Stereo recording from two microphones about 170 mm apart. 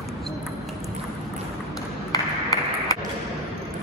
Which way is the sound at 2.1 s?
20° left (ahead or behind).